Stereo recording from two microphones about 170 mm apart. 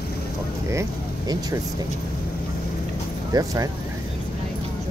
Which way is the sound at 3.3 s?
20° right (ahead or behind).